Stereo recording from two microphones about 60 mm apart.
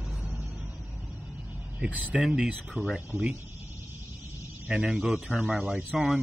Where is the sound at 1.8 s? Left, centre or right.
Right.